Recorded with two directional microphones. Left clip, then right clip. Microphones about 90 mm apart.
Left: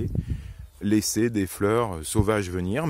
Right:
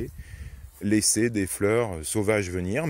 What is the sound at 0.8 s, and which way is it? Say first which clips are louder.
Speech: even; 35° left (ahead or behind).